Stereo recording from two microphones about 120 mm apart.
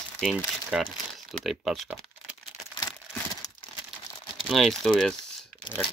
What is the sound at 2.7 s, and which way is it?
Crumpling, 30° left (ahead or behind).